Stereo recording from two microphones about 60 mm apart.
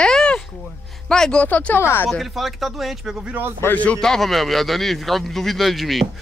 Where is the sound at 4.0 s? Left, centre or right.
Centre.